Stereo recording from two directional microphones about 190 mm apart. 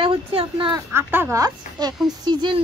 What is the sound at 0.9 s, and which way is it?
Speech, 10° right (ahead or behind).